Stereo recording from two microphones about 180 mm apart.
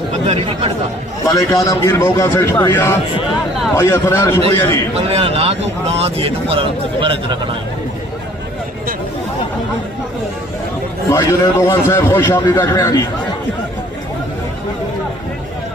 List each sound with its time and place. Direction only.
0.3 s speech: 30° right (ahead or behind)
1.2 s a man's voice: 20° left (ahead or behind)
4.9 s speech: 35° right (ahead or behind)
11.1 s a man's voice: 15° left (ahead or behind)